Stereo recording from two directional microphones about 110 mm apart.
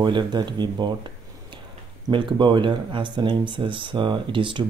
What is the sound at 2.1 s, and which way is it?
Speech, 45° right (ahead or behind).